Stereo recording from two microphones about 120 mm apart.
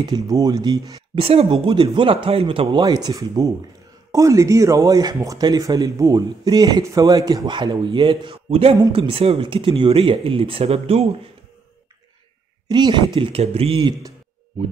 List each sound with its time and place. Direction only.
0.0 s speech: 35° right (ahead or behind)
1.1 s speech: 55° right (ahead or behind)
2.8 s speech: 35° right (ahead or behind); by 11.1 s 55° right (ahead or behind)
12.6 s speech: 35° right (ahead or behind)